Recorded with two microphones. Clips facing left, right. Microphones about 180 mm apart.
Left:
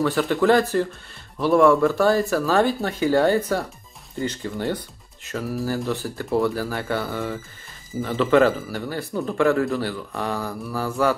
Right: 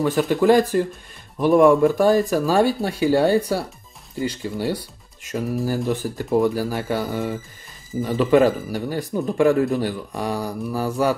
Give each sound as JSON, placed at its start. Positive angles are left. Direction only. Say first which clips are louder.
{"t": 0.0, "sound": "speech", "louder": "right 2 dB", "side_deg": -15}